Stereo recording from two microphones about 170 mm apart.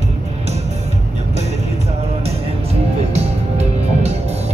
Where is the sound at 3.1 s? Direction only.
40° right (ahead or behind).